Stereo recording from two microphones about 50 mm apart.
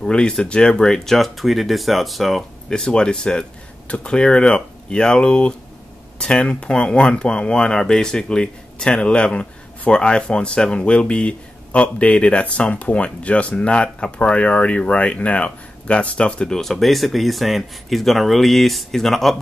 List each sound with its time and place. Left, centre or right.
0.0 s speech: centre
2.7 s speech: centre